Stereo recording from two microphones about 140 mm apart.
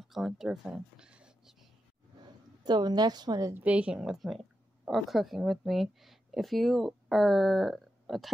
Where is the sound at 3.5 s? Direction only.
10° right (ahead or behind).